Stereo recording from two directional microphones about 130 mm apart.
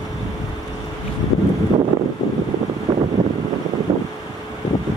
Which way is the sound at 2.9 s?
35° right (ahead or behind).